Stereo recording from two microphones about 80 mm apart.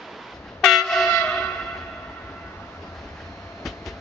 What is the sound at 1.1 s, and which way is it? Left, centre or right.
Train, left.